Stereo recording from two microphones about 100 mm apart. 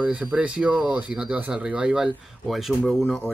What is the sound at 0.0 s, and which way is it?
Speech, 10° right (ahead or behind).